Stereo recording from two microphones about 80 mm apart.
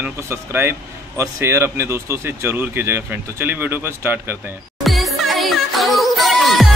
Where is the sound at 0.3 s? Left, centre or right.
Right.